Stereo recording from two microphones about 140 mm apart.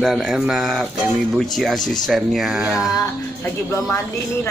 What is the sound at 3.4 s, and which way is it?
Speech, 15° left (ahead or behind).